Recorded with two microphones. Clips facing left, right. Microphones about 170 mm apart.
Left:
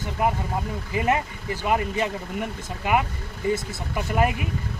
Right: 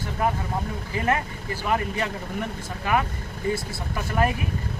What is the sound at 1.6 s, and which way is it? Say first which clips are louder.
Speech: left 2 dB; 20° left (ahead or behind).